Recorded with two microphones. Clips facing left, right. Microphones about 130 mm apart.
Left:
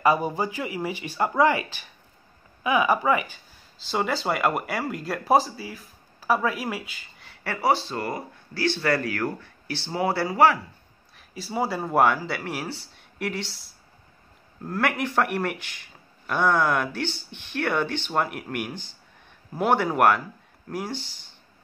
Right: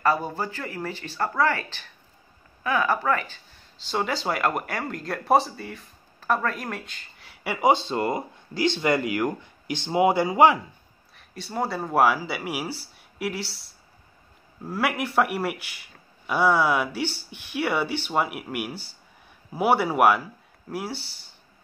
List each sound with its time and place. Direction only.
0.0 s speech: 15° left (ahead or behind)
7.4 s speech: 15° right (ahead or behind)
11.1 s speech: 5° left (ahead or behind)